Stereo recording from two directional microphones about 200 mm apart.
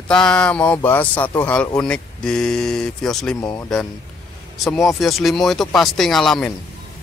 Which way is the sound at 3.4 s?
20° left (ahead or behind).